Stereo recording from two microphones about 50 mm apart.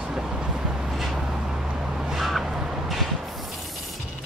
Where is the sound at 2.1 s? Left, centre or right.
Centre.